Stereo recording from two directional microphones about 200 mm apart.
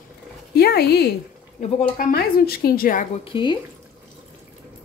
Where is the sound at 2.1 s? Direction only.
50° left (ahead or behind).